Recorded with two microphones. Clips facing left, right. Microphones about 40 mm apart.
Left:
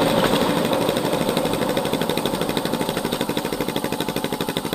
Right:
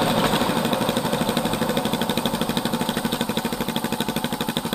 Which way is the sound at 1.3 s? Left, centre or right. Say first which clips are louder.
Left 2 dB; right.